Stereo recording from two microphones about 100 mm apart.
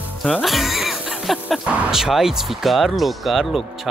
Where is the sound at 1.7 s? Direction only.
5° right (ahead or behind).